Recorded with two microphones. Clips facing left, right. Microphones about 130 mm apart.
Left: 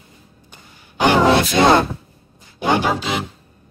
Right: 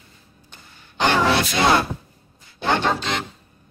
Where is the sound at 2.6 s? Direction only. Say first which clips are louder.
Left 3 dB; 10° left (ahead or behind).